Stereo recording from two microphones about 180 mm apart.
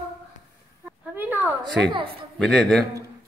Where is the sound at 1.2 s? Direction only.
10° right (ahead or behind).